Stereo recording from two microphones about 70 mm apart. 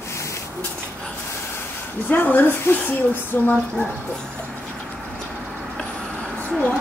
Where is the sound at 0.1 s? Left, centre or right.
Left.